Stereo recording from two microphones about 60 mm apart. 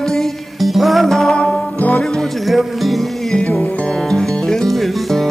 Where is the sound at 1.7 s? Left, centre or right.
Left.